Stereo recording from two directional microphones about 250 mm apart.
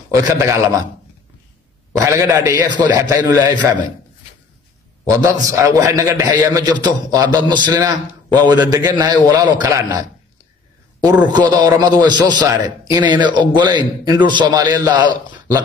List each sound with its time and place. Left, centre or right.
0.1 s a man's voice: centre
1.9 s a man's voice: centre
5.1 s a man's voice: centre
11.3 s a man's voice: centre